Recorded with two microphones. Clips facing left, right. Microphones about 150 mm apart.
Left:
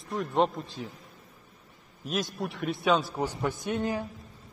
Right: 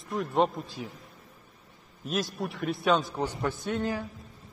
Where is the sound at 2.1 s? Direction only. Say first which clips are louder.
Even; centre (ahead or behind); by 4.0 s 20° left (ahead or behind).